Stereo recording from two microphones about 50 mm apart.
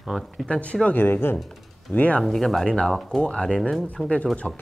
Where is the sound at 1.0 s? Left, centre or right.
Left.